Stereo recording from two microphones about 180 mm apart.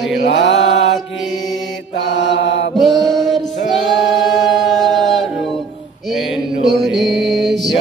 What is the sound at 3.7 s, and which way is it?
A capella, centre (ahead or behind).